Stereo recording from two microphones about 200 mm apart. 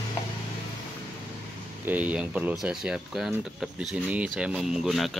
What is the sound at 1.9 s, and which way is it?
Speech, 10° right (ahead or behind).